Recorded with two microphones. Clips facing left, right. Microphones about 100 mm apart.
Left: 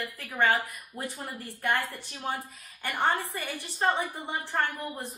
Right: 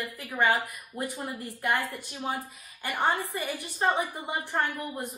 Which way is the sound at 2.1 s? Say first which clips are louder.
Right 1 dB; 5° right (ahead or behind).